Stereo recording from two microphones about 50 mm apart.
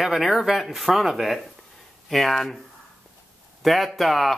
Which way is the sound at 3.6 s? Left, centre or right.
Centre.